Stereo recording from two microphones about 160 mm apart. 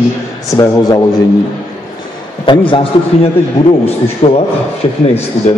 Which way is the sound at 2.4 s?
30° left (ahead or behind).